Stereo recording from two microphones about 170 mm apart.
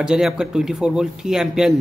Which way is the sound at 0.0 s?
5° right (ahead or behind).